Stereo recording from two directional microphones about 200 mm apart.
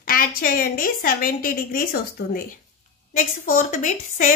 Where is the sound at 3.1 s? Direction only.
40° left (ahead or behind).